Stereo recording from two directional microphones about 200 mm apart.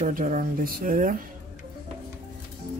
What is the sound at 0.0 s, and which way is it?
Speech, 40° right (ahead or behind).